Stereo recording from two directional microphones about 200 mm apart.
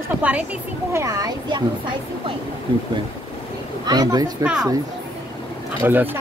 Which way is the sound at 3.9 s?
20° right (ahead or behind).